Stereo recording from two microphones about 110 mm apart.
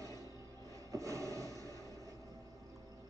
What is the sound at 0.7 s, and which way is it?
Train, 30° right (ahead or behind).